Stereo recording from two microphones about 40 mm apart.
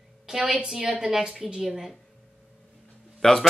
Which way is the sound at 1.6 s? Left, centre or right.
Centre.